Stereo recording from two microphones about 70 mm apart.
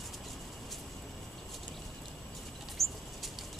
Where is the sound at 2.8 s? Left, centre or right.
Centre.